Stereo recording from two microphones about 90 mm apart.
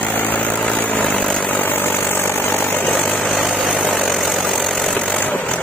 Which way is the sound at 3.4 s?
Centre (ahead or behind).